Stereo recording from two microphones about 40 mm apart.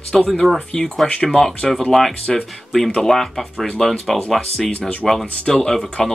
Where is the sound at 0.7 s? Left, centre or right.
Centre.